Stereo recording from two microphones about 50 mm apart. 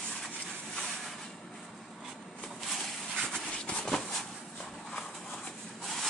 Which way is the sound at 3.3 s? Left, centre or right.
Centre.